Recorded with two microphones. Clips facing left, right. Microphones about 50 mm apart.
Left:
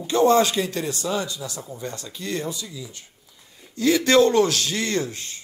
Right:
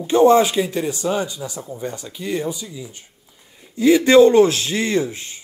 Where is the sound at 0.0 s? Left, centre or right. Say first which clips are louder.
Right 5 dB; right.